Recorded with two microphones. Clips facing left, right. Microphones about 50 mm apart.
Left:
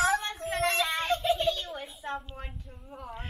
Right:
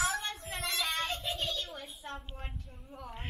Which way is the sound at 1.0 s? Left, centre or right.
Left.